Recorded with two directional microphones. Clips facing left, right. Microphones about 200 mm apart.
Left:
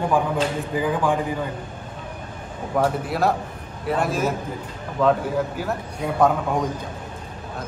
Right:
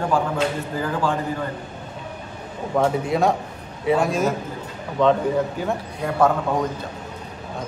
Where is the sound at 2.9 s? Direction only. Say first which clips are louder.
Right 2 dB; centre (ahead or behind).